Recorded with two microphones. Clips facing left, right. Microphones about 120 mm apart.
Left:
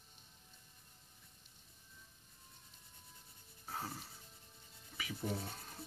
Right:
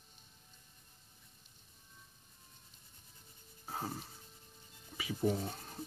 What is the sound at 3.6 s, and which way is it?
Music, 20° right (ahead or behind).